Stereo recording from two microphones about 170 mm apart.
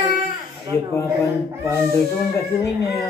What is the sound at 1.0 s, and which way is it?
Speech, 15° left (ahead or behind).